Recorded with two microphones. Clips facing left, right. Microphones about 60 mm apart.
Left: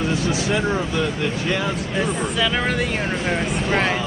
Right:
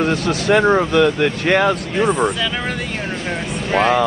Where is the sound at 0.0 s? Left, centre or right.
Right.